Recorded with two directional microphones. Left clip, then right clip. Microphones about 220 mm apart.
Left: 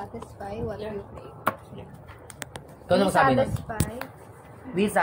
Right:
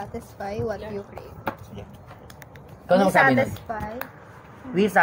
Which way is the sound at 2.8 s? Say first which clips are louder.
Right 3 dB; 25° right (ahead or behind).